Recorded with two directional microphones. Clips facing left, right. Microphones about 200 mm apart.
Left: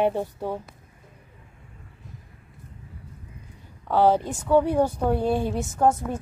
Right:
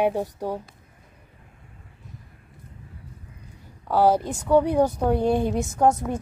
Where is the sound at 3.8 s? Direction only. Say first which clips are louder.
Even; 10° right (ahead or behind).